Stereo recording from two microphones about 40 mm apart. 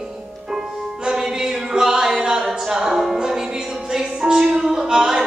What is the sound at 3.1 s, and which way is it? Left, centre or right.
Music, centre.